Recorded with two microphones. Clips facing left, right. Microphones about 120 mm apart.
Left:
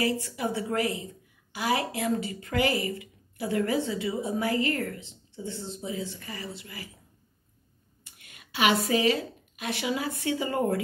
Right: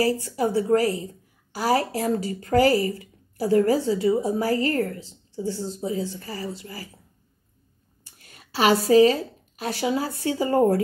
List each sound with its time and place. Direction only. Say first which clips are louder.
0.0 s a woman's voice: right 6 dB; 35° right (ahead or behind)
8.0 s a woman's voice: right 3 dB; 35° right (ahead or behind)